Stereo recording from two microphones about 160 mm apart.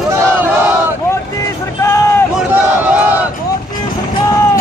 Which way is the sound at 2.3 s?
10° right (ahead or behind).